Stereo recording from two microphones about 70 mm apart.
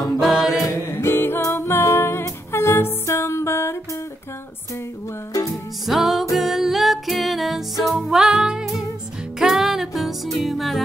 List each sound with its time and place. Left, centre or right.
0.2 s chant: centre
0.7 s a capella: left
1.5 s music: left
5.5 s music: centre